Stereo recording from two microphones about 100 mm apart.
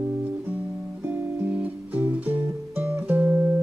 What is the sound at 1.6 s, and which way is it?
Music, 15° right (ahead or behind).